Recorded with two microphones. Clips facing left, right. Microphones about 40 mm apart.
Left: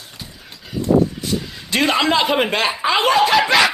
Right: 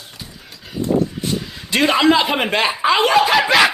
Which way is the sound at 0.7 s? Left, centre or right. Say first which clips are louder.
Left 2 dB; right.